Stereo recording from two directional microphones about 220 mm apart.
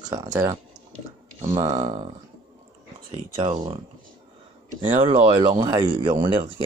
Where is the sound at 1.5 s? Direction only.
15° right (ahead or behind).